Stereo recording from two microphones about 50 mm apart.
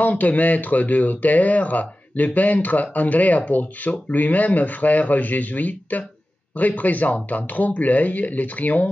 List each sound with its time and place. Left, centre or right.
0.0 s speech: left